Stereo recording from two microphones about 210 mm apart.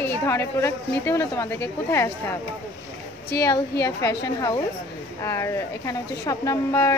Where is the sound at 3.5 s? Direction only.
15° left (ahead or behind).